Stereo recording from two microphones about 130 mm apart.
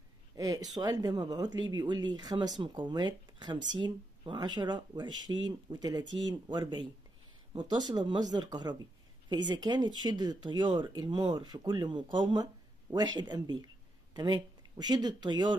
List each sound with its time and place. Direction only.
0.4 s speech: 30° right (ahead or behind)